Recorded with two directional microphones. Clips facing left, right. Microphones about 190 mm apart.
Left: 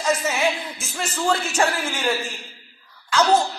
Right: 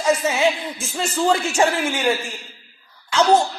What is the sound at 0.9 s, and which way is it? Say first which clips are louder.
Music: right 4 dB; 20° right (ahead or behind).